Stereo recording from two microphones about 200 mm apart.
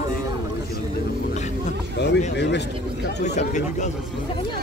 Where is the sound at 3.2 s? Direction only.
35° left (ahead or behind).